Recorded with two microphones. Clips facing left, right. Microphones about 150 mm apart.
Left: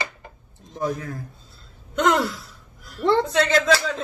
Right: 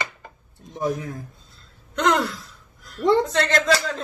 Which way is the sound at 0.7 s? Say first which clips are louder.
Right 1 dB; 20° right (ahead or behind).